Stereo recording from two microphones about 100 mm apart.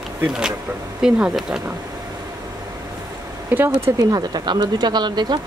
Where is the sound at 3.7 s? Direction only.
30° right (ahead or behind).